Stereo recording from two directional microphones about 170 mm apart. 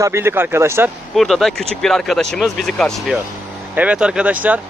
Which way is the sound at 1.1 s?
Centre (ahead or behind).